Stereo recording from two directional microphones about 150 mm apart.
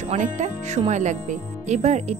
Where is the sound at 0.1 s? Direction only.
50° right (ahead or behind).